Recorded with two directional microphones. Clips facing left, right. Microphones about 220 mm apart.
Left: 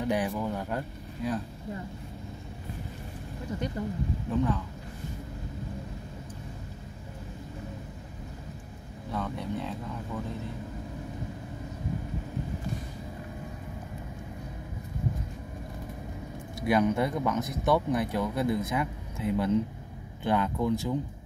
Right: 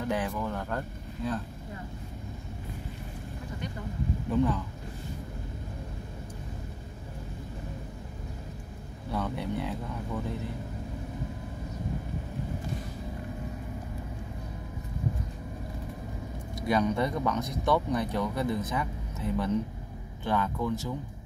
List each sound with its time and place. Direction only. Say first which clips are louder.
0.0 s a sound: left 2 dB; 15° left (ahead or behind)
0.4 s speech: left 1 dB; 15° left (ahead or behind)
9.1 s speech: right 1 dB; 5° right (ahead or behind)
16.6 s speech: left 2 dB; 10° left (ahead or behind)